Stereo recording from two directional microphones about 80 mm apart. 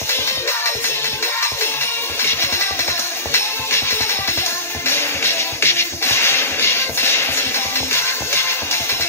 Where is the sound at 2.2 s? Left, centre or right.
Left.